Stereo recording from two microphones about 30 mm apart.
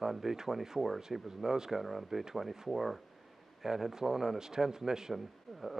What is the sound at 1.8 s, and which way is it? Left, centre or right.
Speech, centre.